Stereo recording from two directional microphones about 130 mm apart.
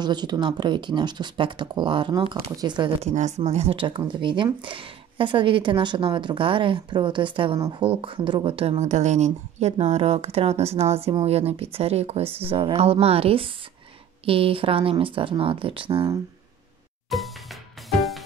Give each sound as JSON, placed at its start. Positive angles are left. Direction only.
{"t": 0.0, "sound": "speech", "side_deg": -35}
{"t": 3.0, "sound": "speech", "side_deg": -60}
{"t": 8.7, "sound": "speech", "side_deg": -60}
{"t": 17.1, "sound": "music", "side_deg": 0}